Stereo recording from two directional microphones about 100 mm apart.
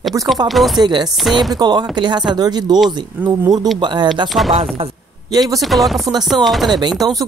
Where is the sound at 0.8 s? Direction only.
45° right (ahead or behind).